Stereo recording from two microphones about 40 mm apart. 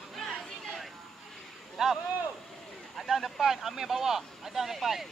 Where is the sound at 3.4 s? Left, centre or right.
Centre.